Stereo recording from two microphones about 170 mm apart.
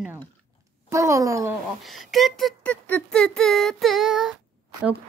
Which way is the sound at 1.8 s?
Centre (ahead or behind).